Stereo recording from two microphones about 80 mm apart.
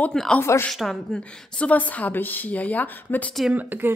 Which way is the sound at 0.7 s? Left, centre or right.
Centre.